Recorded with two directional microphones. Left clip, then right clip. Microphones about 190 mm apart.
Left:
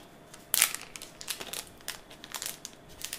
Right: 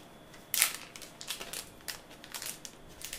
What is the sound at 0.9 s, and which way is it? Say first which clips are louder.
Crushing: left 2 dB; 25° left (ahead or behind).